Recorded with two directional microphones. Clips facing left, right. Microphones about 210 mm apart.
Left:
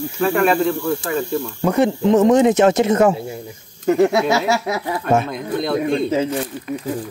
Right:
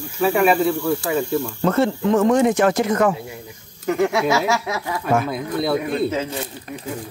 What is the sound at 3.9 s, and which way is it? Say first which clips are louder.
Speech: left 4 dB; 35° left (ahead or behind).